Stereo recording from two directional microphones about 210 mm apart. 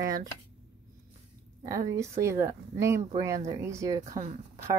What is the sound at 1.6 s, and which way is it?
Speech, 15° right (ahead or behind).